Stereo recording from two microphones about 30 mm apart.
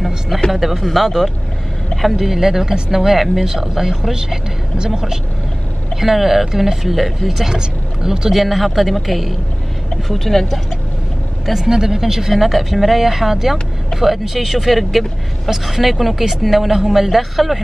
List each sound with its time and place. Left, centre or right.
0.5 s speech: centre
2.1 s speech: centre
5.9 s speech: centre
7.5 s speech: right
8.3 s speech: centre
11.5 s speech: centre
12.4 s speech: centre